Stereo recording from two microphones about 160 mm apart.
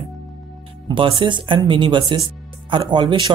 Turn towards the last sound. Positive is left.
turn(degrees=-30)  # may be behind; listen again after turning